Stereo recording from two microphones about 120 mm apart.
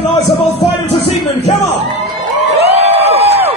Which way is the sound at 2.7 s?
60° right (ahead or behind).